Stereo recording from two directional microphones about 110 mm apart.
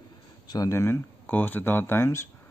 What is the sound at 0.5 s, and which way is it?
Speech, 30° left (ahead or behind).